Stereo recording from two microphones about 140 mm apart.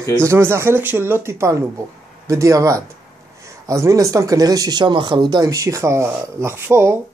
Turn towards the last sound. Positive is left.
turn(degrees=-15)  # may be behind; listen again after turning